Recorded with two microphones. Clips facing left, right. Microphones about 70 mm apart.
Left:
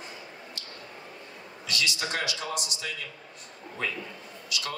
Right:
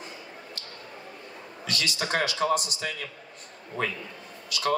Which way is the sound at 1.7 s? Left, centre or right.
Right.